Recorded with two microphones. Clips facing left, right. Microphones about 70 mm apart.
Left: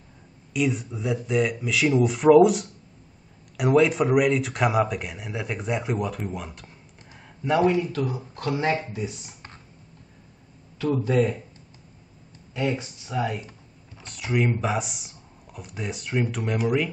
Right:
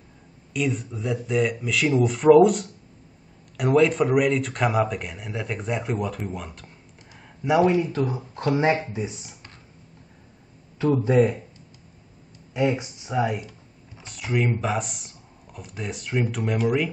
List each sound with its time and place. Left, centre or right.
0.5 s speech: centre
7.4 s speech: centre
10.8 s speech: right
12.5 s speech: centre
14.0 s speech: centre